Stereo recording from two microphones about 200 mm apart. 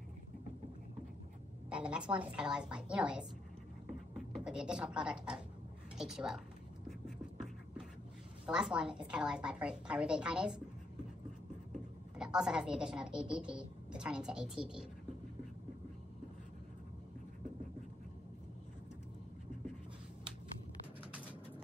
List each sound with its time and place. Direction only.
1.7 s a woman's voice: 5° right (ahead or behind)
4.5 s a woman's voice: 5° right (ahead or behind)
8.5 s a woman's voice: 5° right (ahead or behind)
12.2 s a woman's voice: 5° right (ahead or behind)